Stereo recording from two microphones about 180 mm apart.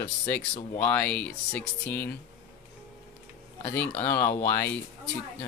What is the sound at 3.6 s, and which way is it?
Speech, 10° left (ahead or behind).